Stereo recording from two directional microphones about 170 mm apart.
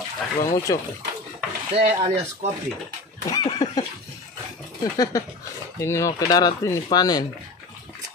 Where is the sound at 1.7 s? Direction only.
35° right (ahead or behind).